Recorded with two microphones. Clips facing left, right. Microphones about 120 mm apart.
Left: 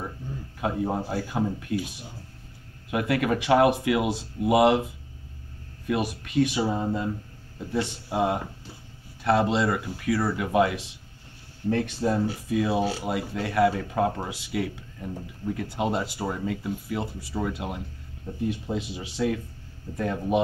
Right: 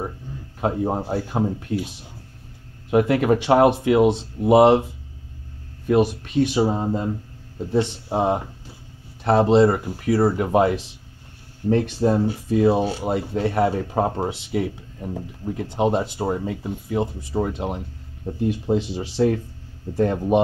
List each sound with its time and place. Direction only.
0.6 s speech: 35° right (ahead or behind)
2.9 s speech: 35° right (ahead or behind)
5.9 s speech: 35° right (ahead or behind)
7.8 s speech: 30° right (ahead or behind)